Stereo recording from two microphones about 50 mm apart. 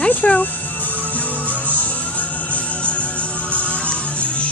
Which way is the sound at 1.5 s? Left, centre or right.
Left.